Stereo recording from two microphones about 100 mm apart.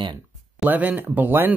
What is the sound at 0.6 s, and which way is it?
Speech, 15° right (ahead or behind).